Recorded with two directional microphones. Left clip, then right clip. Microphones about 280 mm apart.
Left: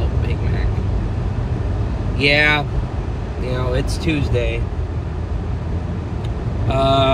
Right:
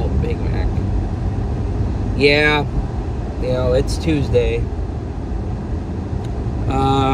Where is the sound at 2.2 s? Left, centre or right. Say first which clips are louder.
Right 1 dB; centre.